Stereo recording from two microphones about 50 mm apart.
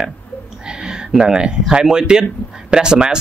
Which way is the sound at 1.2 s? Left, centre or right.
Centre.